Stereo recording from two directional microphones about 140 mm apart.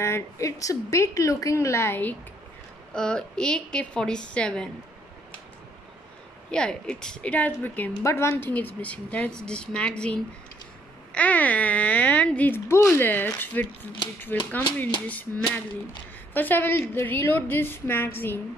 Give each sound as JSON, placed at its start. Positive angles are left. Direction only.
{"t": 0.0, "sound": "a woman's voice", "side_deg": 20}
{"t": 6.5, "sound": "a woman's voice", "side_deg": 5}